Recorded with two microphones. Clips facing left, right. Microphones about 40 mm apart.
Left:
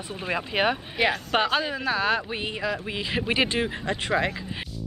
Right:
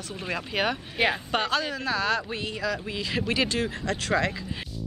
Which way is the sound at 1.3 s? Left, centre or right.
Left.